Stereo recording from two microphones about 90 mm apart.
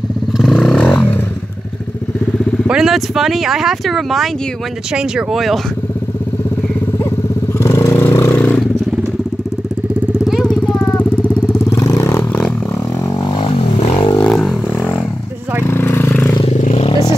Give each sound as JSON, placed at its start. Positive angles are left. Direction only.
{"t": 0.4, "sound": "vehicle", "side_deg": 5}
{"t": 2.7, "sound": "speech", "side_deg": -5}
{"t": 7.5, "sound": "vehicle", "side_deg": 30}
{"t": 10.1, "sound": "vehicle", "side_deg": 0}
{"t": 10.4, "sound": "vehicle", "side_deg": 10}
{"t": 10.8, "sound": "vehicle", "side_deg": 25}
{"t": 11.7, "sound": "vehicle", "side_deg": 40}
{"t": 12.2, "sound": "a sound", "side_deg": 10}
{"t": 13.3, "sound": "vehicle", "side_deg": 65}
{"t": 14.2, "sound": "a sound", "side_deg": 10}
{"t": 15.6, "sound": "vehicle", "side_deg": 25}